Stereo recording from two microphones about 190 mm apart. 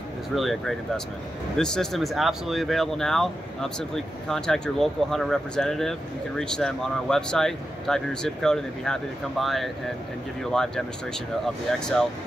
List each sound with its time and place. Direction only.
0.4 s speech: centre (ahead or behind)
11.4 s speech: 5° left (ahead or behind)